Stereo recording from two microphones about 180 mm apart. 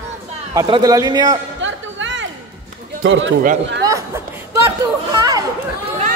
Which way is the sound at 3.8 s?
15° right (ahead or behind).